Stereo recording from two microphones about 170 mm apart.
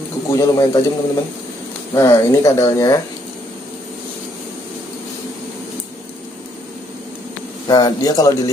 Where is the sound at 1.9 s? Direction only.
15° left (ahead or behind).